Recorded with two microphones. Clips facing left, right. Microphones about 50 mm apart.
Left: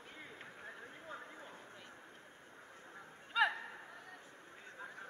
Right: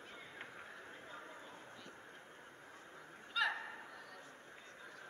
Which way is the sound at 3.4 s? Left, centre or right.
Left.